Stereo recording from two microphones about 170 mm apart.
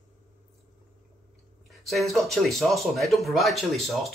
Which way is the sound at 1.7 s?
Centre (ahead or behind).